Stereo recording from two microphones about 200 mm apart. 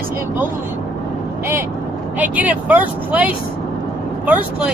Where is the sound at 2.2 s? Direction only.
10° right (ahead or behind).